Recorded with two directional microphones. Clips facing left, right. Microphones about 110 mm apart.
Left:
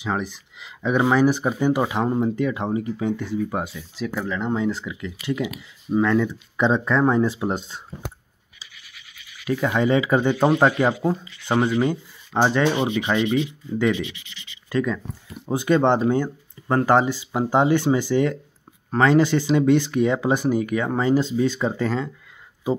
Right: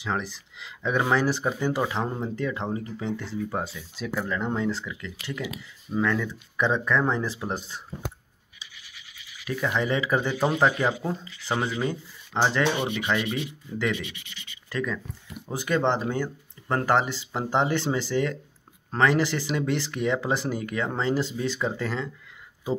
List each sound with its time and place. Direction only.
0.0 s speech: 15° left (ahead or behind)
3.9 s speech: centre (ahead or behind); by 7.8 s 25° left (ahead or behind)
9.7 s speech: 20° left (ahead or behind)